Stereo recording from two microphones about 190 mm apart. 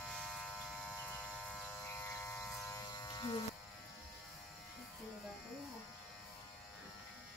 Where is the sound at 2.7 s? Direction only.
20° left (ahead or behind).